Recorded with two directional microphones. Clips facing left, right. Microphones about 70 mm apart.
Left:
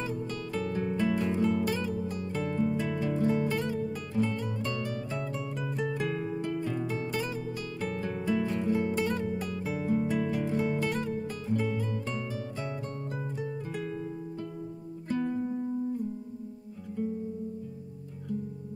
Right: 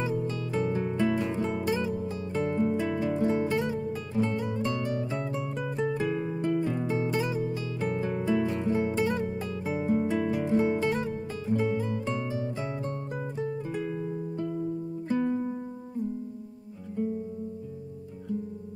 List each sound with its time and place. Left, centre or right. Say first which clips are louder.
0.5 s music: right 2 dB; centre
11.4 s music: right 4 dB; centre
11.7 s music: right 4 dB; centre